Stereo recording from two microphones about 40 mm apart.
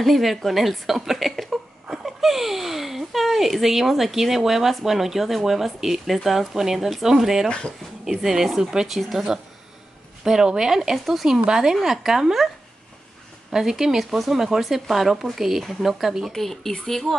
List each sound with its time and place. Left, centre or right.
0.0 s a woman's voice: centre
7.4 s speech: left
8.0 s a woman's voice: centre
11.4 s a woman's voice: centre
13.5 s a woman's voice: centre
15.9 s a woman's voice: centre
16.3 s speech: centre